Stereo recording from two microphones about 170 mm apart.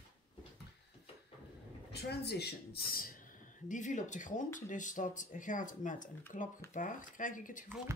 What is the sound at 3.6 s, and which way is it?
Speech, 45° left (ahead or behind).